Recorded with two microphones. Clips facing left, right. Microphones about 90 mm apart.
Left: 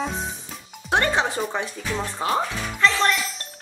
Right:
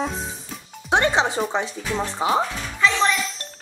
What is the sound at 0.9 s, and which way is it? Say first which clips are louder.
Speech: right 2 dB; 15° right (ahead or behind).